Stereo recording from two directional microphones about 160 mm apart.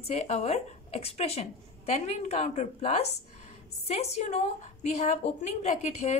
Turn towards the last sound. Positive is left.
turn(degrees=45)  # may be behind; listen again after turning